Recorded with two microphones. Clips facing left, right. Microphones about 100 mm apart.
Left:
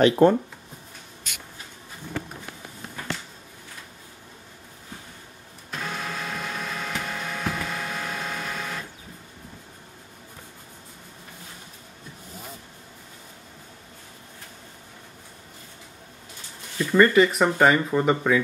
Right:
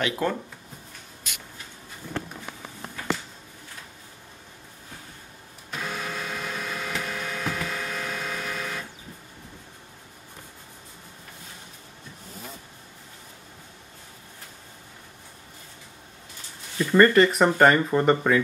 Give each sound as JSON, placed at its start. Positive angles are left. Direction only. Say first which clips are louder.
{"t": 0.0, "sound": "speech", "louder": "left 10 dB", "side_deg": 35}
{"t": 5.7, "sound": "printer", "louder": "even", "side_deg": 0}
{"t": 16.7, "sound": "speech", "louder": "even", "side_deg": 0}